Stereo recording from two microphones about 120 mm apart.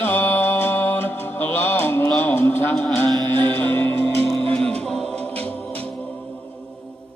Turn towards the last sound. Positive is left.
turn(degrees=5)  # may be behind; listen again after turning